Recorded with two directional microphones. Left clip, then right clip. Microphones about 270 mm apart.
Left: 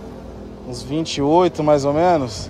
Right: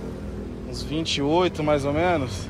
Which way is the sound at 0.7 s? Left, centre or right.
Left.